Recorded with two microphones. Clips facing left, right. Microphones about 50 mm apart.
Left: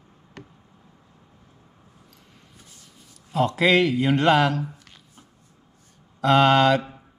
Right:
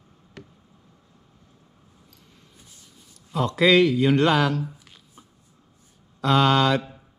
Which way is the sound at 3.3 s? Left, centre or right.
Left.